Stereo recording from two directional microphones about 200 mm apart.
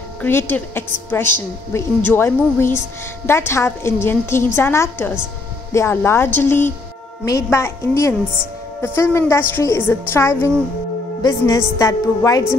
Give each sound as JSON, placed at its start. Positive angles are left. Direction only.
{"t": 0.2, "sound": "a woman's voice", "side_deg": 10}